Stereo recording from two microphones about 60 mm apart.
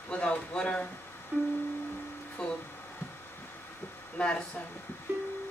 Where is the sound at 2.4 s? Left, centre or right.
Centre.